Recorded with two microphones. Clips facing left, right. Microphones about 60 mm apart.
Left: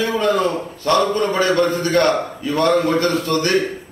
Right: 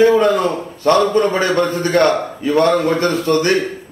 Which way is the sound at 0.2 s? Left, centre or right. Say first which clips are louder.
Right 3 dB; right.